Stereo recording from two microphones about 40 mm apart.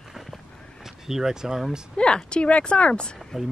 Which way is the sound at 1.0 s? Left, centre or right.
Centre.